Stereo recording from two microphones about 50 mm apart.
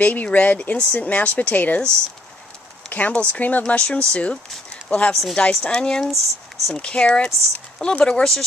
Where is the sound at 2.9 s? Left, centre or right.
Left.